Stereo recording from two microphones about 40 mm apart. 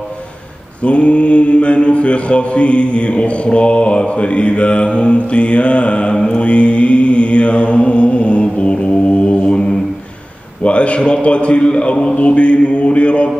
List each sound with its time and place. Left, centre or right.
0.8 s mantra: left
10.6 s a sound: left
11.0 s mantra: left